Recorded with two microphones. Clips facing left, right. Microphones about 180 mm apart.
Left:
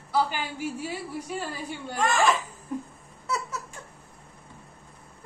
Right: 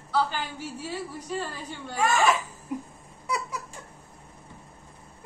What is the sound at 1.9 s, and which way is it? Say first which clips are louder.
Speech: even; 10° right (ahead or behind).